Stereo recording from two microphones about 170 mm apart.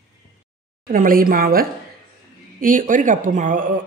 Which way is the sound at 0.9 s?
55° right (ahead or behind).